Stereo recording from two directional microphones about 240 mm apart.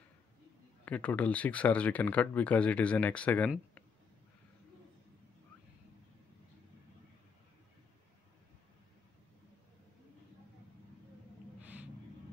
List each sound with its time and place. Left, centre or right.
0.8 s speech: centre
11.6 s gasp: centre